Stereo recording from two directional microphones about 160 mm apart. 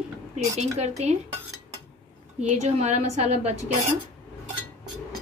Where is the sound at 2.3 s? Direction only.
45° right (ahead or behind).